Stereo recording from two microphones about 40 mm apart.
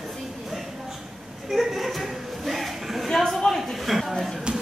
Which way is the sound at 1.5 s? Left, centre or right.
Centre.